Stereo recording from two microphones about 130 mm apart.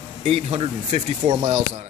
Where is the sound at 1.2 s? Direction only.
70° right (ahead or behind).